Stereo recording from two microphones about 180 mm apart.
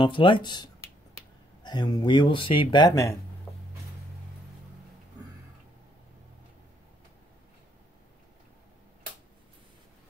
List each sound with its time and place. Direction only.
0.0 s speech: 25° left (ahead or behind)